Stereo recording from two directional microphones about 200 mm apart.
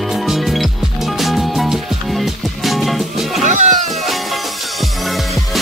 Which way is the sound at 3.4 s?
35° right (ahead or behind).